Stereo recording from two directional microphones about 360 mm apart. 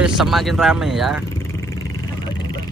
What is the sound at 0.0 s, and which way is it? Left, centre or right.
Speech, centre.